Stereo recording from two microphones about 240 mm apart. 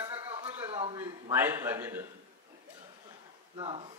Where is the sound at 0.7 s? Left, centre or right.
Right.